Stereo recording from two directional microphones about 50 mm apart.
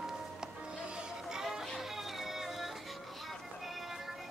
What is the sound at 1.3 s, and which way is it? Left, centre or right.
Music, centre.